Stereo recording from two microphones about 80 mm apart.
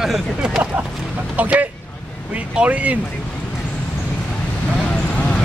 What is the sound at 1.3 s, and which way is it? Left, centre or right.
Speech, centre.